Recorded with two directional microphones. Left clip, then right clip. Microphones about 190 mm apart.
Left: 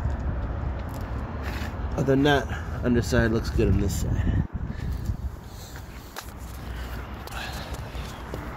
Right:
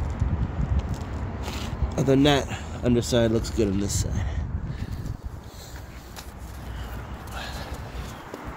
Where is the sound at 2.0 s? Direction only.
25° right (ahead or behind).